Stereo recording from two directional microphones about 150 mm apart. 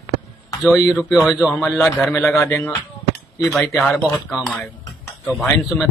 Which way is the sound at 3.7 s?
5° left (ahead or behind).